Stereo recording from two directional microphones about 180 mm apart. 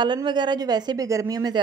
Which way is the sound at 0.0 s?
25° right (ahead or behind).